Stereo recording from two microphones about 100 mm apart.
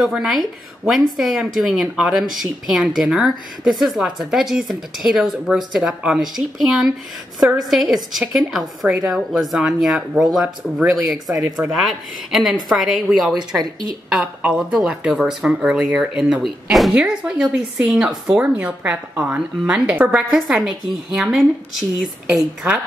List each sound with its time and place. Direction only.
0.0 s speech: 5° right (ahead or behind)